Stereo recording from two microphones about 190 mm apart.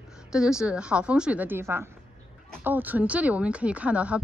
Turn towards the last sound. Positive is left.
turn(degrees=-5)  # may be behind; listen again after turning